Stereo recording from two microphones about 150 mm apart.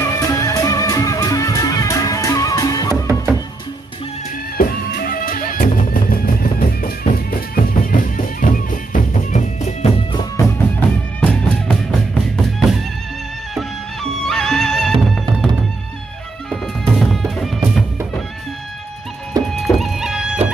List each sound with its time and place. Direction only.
0.0 s music: 20° left (ahead or behind)
2.9 s music: 20° right (ahead or behind)
4.6 s music: 75° left (ahead or behind); by 9.8 s 55° left (ahead or behind)
11.1 s music: 10° left (ahead or behind)
14.2 s music: 5° left (ahead or behind)
16.4 s music: centre (ahead or behind)
19.6 s music: centre (ahead or behind)